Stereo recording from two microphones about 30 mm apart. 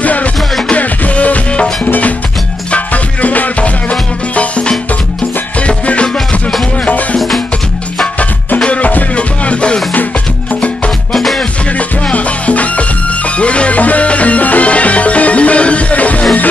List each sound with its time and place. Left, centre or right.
0.0 s music: left
5.6 s music: left
7.2 s music: centre
8.6 s music: left
12.1 s music: left